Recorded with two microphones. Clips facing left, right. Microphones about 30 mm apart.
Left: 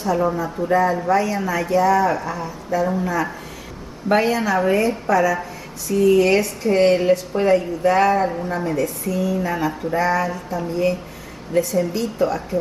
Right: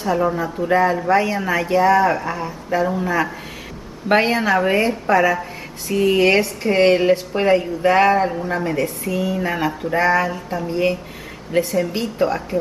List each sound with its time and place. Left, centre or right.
0.0 s speech: right
0.7 s speech: right
4.1 s speech: right